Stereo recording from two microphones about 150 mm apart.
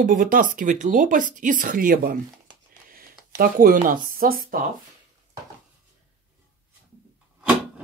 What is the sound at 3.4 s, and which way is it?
Speech, 70° right (ahead or behind).